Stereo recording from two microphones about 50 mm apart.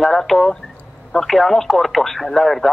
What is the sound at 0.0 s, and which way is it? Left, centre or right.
Speech, centre.